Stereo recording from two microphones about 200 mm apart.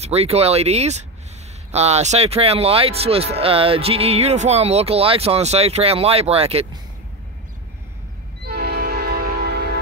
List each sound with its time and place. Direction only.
0.0 s speech: 30° right (ahead or behind)
8.5 s train: 50° right (ahead or behind)